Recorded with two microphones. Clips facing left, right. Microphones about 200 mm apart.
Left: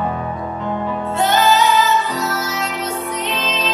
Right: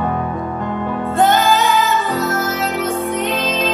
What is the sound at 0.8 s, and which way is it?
Music, 50° right (ahead or behind).